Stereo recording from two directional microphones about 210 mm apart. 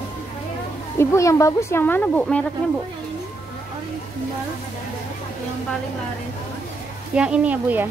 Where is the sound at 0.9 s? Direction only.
15° left (ahead or behind).